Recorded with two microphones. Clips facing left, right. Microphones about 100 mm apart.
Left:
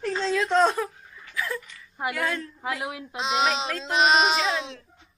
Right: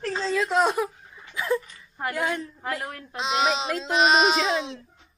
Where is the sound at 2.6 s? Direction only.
5° left (ahead or behind).